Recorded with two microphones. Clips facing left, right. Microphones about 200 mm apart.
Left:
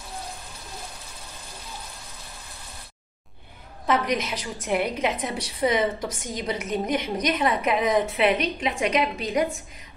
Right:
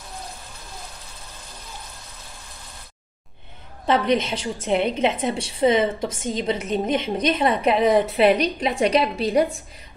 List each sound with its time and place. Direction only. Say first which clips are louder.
3.8 s a woman's voice: right 4 dB; 30° right (ahead or behind)